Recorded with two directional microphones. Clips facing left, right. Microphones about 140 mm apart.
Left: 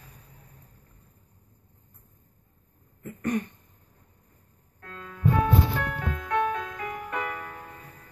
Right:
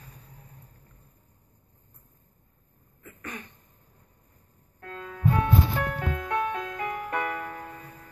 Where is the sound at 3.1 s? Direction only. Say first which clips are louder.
Left 13 dB; 45° left (ahead or behind).